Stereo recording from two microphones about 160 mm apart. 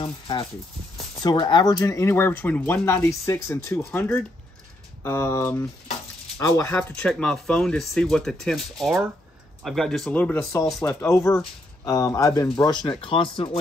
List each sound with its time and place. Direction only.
0.0 s speech: 30° left (ahead or behind)